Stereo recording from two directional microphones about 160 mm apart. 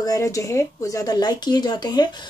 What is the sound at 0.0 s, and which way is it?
Speech, 20° left (ahead or behind).